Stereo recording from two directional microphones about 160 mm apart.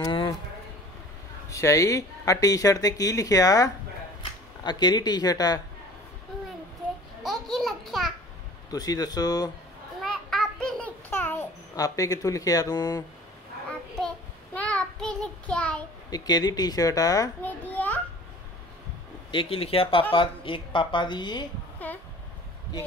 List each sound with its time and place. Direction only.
0.0 s a sound: 30° left (ahead or behind)
1.5 s speech: 20° left (ahead or behind)
7.2 s babbling: centre (ahead or behind)
8.6 s speech: 25° left (ahead or behind)
10.0 s a sound: centre (ahead or behind); by 13.0 s 25° left (ahead or behind)
13.7 s child singing: 5° left (ahead or behind)
16.1 s speech: 25° left (ahead or behind)
17.4 s children playing: 10° left (ahead or behind)
19.3 s a woman's voice: 35° left (ahead or behind)
21.8 s a sound: 10° left (ahead or behind)